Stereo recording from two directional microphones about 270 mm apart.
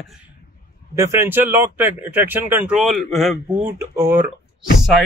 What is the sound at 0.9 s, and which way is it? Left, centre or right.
Speech, centre.